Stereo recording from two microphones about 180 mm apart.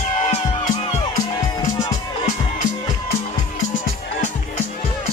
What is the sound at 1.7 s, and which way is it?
Music, 20° left (ahead or behind).